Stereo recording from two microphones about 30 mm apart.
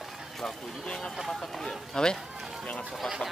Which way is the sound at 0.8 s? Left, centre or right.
Left.